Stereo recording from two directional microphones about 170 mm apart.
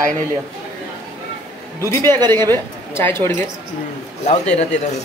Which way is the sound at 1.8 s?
15° left (ahead or behind).